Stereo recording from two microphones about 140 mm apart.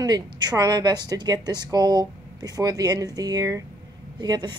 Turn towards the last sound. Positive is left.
turn(degrees=-30)  # may be behind; listen again after turning